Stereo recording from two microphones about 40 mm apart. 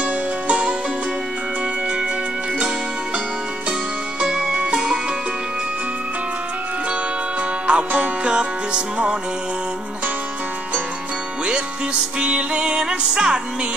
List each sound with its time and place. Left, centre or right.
0.0 s music: right
4.2 s music: centre
7.6 s music: right
11.4 s music: right